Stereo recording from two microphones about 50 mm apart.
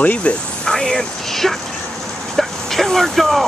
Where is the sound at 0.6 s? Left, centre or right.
Centre.